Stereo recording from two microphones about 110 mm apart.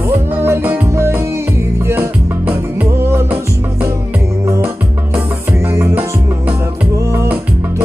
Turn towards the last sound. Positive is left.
turn(degrees=-25)  # may be behind; listen again after turning